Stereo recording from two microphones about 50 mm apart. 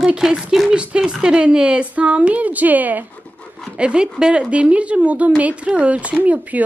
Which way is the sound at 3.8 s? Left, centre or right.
Centre.